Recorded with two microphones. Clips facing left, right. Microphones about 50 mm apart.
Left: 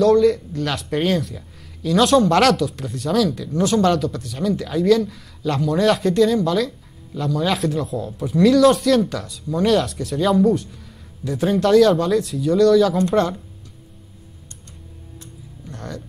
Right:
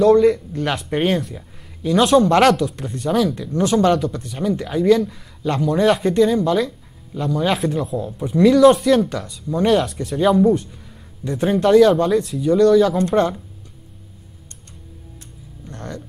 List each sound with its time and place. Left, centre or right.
0.0 s speech: right
3.3 s speech: centre
12.4 s speech: centre